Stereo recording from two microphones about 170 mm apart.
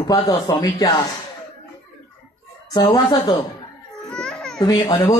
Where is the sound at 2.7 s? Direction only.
25° left (ahead or behind).